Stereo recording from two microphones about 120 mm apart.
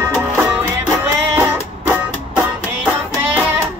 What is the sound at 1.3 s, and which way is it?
Music, 15° right (ahead or behind).